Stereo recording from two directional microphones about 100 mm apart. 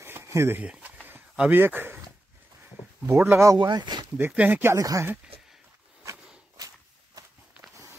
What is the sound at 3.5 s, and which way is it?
Speech, 45° right (ahead or behind).